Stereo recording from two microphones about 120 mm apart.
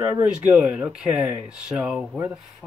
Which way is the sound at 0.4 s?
10° right (ahead or behind).